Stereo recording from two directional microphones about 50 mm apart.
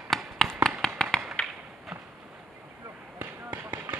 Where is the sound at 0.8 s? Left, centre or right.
Centre.